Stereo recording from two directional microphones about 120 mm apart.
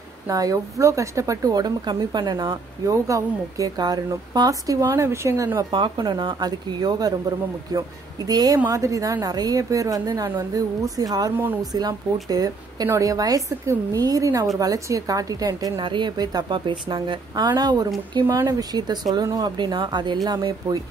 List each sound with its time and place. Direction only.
0.3 s a woman's voice: 30° right (ahead or behind)